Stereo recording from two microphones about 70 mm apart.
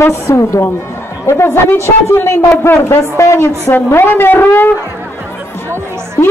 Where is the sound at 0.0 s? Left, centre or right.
Left.